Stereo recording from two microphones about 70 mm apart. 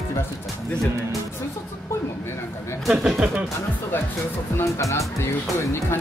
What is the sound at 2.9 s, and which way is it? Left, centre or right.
Speech, centre.